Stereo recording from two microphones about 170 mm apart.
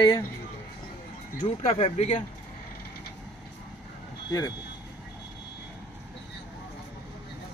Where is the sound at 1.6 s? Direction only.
35° left (ahead or behind).